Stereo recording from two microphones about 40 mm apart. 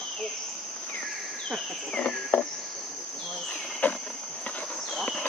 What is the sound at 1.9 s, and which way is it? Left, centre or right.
Cricket, left.